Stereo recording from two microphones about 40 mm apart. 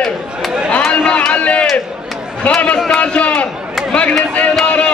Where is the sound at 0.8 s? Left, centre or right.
Centre.